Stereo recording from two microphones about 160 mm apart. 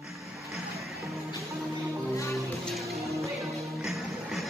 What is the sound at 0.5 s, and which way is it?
Music, centre (ahead or behind).